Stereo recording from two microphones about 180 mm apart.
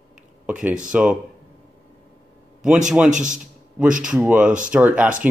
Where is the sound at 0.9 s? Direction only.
5° right (ahead or behind).